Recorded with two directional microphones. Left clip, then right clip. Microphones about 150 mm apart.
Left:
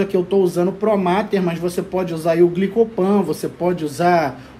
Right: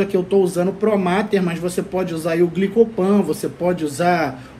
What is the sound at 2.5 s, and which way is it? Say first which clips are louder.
Speech: right 1 dB; 60° left (ahead or behind).